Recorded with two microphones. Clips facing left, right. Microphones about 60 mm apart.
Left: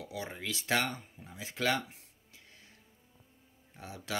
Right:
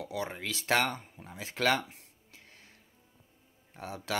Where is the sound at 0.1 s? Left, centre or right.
Right.